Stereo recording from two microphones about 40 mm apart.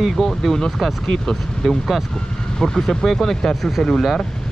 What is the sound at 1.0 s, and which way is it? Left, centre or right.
Speech, centre.